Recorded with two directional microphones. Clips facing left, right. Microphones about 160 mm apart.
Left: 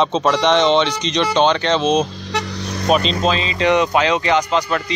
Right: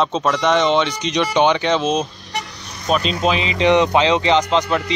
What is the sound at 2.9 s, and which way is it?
Speech, 10° left (ahead or behind).